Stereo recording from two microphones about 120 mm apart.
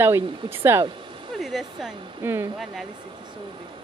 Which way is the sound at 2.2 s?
20° right (ahead or behind).